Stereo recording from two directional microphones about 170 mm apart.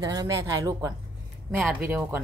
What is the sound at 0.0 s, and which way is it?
Speech, 20° right (ahead or behind).